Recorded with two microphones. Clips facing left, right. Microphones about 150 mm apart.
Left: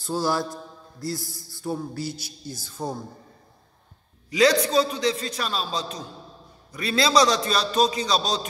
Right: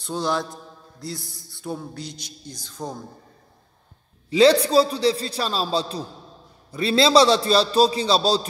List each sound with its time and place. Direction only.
0.0 s a man's voice: 5° left (ahead or behind)
4.3 s a man's voice: 30° right (ahead or behind)